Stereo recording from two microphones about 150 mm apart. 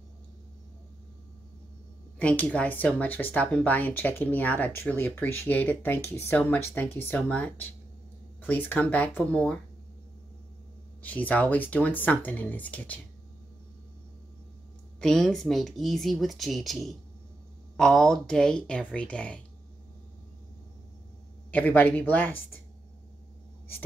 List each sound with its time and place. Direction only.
2.1 s speech: 10° left (ahead or behind)
11.0 s speech: 10° left (ahead or behind)
15.0 s speech: 5° left (ahead or behind)
21.5 s speech: 10° left (ahead or behind)